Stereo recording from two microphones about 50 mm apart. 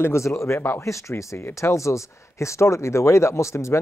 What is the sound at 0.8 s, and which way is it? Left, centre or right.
Speech, left.